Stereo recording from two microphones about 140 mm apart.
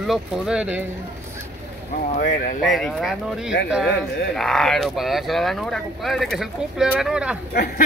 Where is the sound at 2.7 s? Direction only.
Centre (ahead or behind).